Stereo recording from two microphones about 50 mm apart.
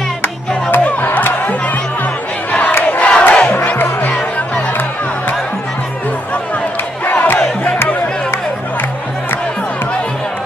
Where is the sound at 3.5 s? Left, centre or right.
Left.